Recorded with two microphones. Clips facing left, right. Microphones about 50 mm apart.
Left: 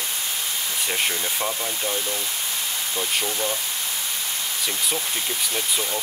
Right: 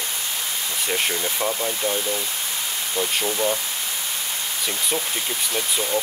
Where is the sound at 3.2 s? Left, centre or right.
Centre.